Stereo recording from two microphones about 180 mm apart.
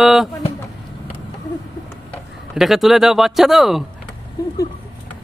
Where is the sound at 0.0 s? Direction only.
Centre (ahead or behind).